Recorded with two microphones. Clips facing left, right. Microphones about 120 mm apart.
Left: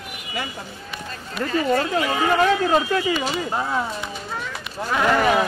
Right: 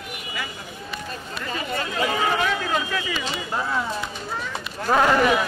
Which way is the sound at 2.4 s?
35° left (ahead or behind).